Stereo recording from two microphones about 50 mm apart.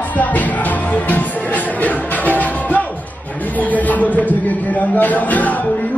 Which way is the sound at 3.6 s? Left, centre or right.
Left.